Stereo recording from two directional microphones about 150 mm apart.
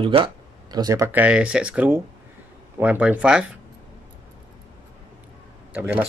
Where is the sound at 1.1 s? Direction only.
10° right (ahead or behind).